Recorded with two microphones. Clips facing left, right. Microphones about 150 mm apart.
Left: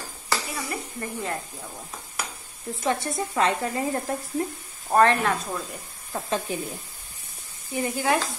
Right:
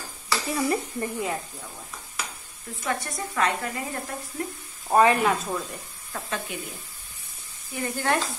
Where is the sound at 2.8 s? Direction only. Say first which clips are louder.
Left 4 dB; 30° left (ahead or behind).